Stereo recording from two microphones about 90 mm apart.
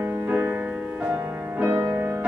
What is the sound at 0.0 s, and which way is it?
Music, 15° right (ahead or behind).